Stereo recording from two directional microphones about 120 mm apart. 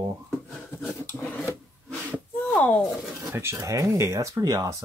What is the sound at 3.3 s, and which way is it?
Speech, 20° right (ahead or behind).